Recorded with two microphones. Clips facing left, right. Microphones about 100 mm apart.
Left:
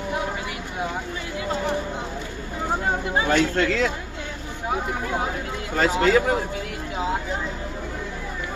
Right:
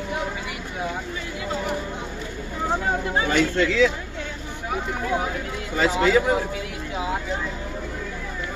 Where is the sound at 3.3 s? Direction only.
50° left (ahead or behind).